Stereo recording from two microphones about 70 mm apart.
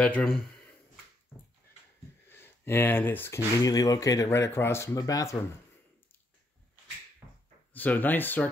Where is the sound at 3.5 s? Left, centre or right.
Left.